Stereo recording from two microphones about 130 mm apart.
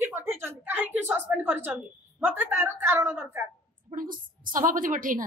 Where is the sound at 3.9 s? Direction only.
90° right.